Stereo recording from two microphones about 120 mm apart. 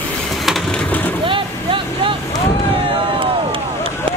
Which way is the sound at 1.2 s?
45° right (ahead or behind).